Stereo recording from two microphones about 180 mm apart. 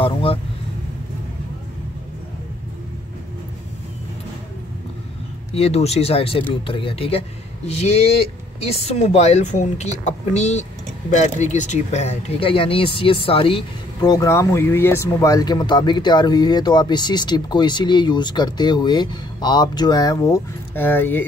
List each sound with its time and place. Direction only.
0.0 s vehicle: 30° left (ahead or behind)
5.5 s speech: 35° left (ahead or behind); by 21.3 s 10° left (ahead or behind)